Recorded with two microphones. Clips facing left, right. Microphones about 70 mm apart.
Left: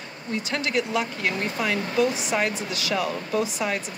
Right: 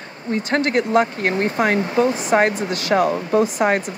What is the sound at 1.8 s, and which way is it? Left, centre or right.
Speech, right.